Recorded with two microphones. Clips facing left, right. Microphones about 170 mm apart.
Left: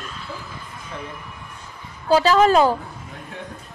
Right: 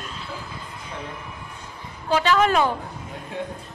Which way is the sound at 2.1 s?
35° left (ahead or behind).